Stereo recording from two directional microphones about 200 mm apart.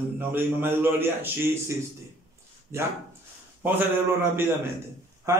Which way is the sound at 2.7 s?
15° right (ahead or behind).